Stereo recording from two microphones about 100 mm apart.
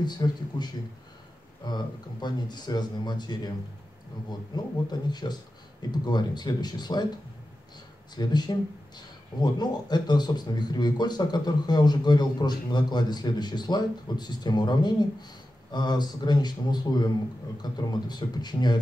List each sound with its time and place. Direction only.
0.0 s speech: 45° left (ahead or behind)
8.1 s speech: 45° left (ahead or behind)